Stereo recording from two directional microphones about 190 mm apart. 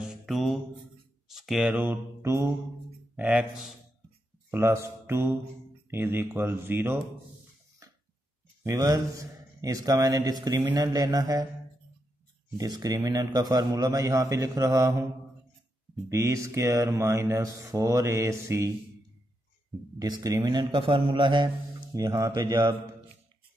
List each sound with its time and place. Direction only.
0.0 s music: centre (ahead or behind)
1.3 s speech: centre (ahead or behind)
8.6 s a man's voice: 20° right (ahead or behind)
12.5 s a man's voice: 20° right (ahead or behind)
16.1 s speech: 15° right (ahead or behind)
20.0 s a man's voice: 20° right (ahead or behind)